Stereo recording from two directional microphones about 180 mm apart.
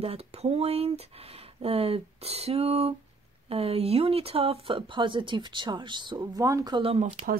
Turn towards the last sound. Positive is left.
turn(degrees=-50)  # may be behind; listen again after turning